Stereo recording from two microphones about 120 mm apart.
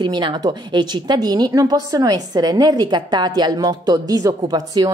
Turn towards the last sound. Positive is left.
turn(degrees=-35)  # may be behind; listen again after turning